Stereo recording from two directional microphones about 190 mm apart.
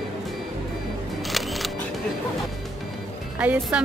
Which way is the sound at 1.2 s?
Centre (ahead or behind).